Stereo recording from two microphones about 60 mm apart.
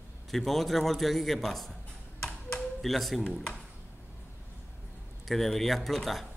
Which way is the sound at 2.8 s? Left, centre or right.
Centre.